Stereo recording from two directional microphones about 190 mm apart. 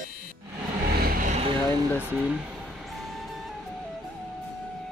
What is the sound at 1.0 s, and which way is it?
Vehicle, 45° right (ahead or behind).